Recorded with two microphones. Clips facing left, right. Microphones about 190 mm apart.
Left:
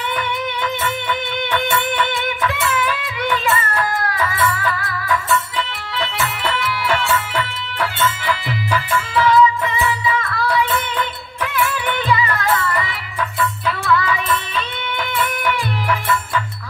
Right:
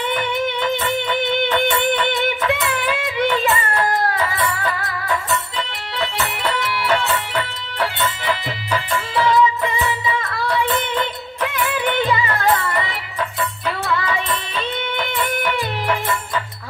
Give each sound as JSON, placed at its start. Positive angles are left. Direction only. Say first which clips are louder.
{"t": 2.1, "sound": "music", "louder": "right 2 dB", "side_deg": -20}
{"t": 4.4, "sound": "music", "louder": "left 2 dB", "side_deg": -15}
{"t": 5.0, "sound": "music", "louder": "left 3 dB", "side_deg": -30}
{"t": 8.3, "sound": "music", "louder": "left 1 dB", "side_deg": -25}